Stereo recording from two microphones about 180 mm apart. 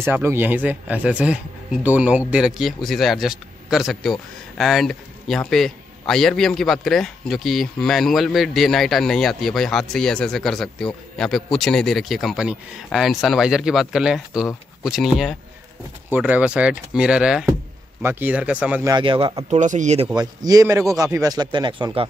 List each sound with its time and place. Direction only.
0.0 s speech: 15° right (ahead or behind)
18.9 s speech: 25° right (ahead or behind)
19.6 s speech: 40° right (ahead or behind)
20.2 s speech: 20° right (ahead or behind)